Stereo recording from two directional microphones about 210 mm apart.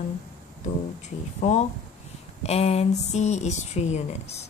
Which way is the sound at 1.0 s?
35° left (ahead or behind).